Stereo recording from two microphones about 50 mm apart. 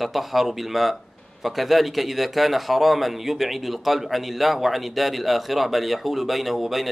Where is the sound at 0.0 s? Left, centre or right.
Centre.